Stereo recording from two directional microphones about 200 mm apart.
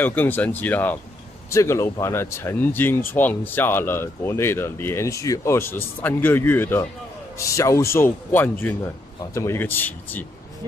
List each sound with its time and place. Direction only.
0.0 s speech: 10° left (ahead or behind)